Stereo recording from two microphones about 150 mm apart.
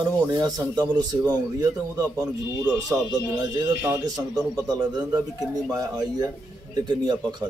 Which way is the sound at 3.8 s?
20° right (ahead or behind).